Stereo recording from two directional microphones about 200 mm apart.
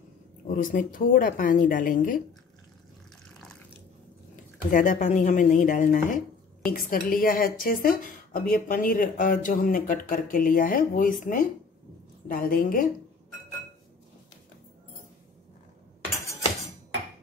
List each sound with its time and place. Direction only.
0.5 s speech: 40° left (ahead or behind)
4.6 s speech: 40° left (ahead or behind)